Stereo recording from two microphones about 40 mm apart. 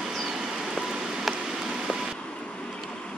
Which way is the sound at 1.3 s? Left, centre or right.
Centre.